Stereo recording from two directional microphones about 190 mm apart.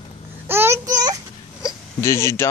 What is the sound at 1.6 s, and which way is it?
Hiccup, 15° left (ahead or behind).